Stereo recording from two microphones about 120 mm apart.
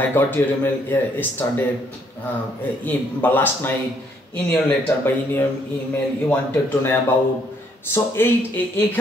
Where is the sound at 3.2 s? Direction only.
15° left (ahead or behind).